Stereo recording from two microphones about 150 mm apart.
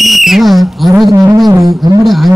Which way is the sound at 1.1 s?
25° right (ahead or behind).